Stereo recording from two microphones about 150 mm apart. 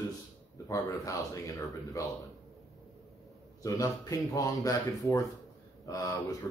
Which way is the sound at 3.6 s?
20° left (ahead or behind).